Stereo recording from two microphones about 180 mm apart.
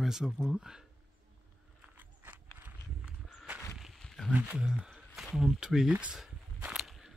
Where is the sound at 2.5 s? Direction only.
5° right (ahead or behind).